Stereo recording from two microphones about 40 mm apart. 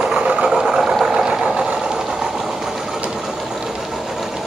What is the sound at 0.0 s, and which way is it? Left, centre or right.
Vehicle, right.